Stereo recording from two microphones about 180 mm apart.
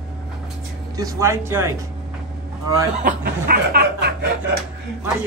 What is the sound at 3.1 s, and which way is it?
Chuckle, 55° right (ahead or behind).